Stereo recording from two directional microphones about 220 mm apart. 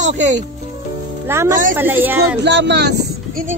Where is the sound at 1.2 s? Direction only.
10° right (ahead or behind).